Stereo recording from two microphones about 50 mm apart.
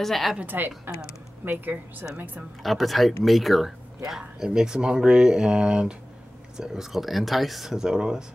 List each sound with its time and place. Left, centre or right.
0.0 s speech: centre
0.5 s a woman's voice: right
2.6 s speech: centre
4.4 s speech: centre